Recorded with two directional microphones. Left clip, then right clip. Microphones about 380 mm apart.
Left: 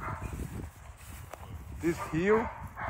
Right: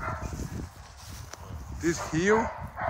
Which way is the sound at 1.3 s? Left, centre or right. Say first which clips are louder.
Right 3 dB; centre.